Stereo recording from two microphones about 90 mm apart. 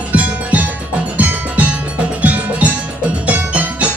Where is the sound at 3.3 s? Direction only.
15° right (ahead or behind).